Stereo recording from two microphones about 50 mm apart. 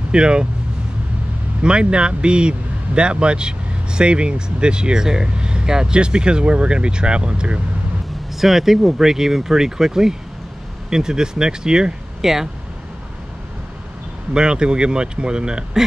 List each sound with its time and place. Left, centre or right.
0.1 s speech: centre
1.6 s speech: centre
8.4 s speech: centre
14.3 s speech: centre